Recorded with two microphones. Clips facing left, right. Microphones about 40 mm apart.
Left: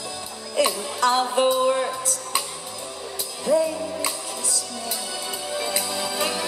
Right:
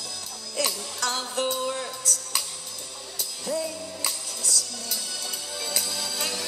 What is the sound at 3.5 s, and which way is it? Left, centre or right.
Music, left.